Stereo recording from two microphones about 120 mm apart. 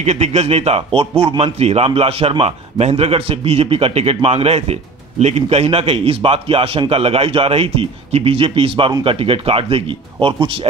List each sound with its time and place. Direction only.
0.0 s a man's voice: 65° right (ahead or behind); by 10.7 s 45° right (ahead or behind)